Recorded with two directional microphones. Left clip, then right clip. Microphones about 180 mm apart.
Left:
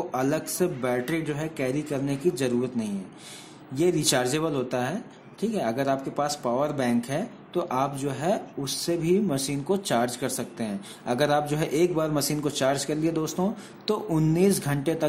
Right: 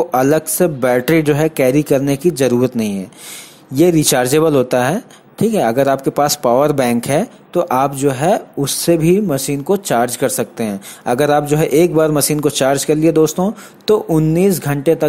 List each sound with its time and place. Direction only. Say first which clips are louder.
0.1 s speech: right 13 dB; 40° right (ahead or behind)